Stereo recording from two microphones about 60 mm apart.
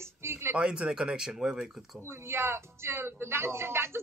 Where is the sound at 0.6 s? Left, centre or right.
Centre.